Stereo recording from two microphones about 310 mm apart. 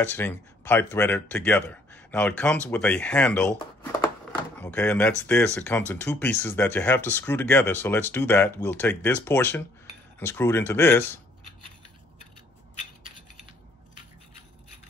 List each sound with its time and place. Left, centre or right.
0.0 s speech: centre